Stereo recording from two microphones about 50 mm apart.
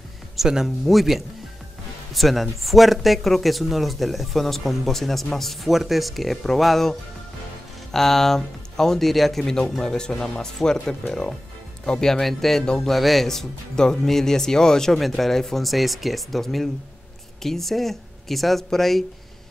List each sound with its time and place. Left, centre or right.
0.4 s speech: centre
12.6 s speech: centre
12.9 s speech: centre